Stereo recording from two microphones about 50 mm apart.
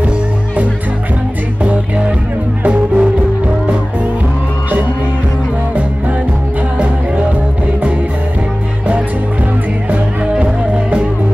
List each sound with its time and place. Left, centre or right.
1.6 s music: right
9.8 s music: right